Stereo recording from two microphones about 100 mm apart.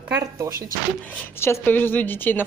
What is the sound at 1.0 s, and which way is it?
Speech, 25° left (ahead or behind).